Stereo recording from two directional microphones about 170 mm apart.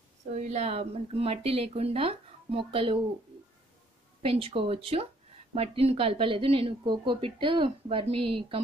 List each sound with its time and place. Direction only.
0.4 s speech: 40° right (ahead or behind)
4.2 s speech: 35° right (ahead or behind)